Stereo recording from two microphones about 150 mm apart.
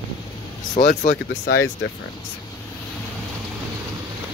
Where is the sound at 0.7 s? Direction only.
65° left (ahead or behind).